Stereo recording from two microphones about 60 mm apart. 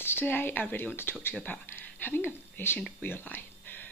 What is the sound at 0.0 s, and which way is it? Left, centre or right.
Speech, left.